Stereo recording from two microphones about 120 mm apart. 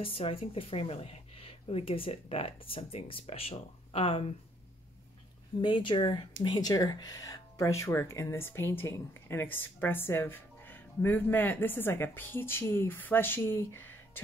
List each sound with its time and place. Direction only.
0.0 s a woman's voice: 50° left (ahead or behind)
5.6 s speech: 40° left (ahead or behind); by 14.2 s 15° left (ahead or behind)